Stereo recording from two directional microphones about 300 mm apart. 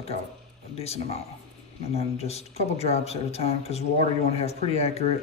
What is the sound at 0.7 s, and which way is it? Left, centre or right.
Speech, left.